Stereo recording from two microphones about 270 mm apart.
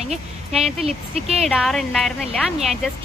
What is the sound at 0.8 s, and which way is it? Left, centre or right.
Speech, right.